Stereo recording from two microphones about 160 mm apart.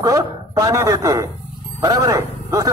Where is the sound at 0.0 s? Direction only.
20° right (ahead or behind).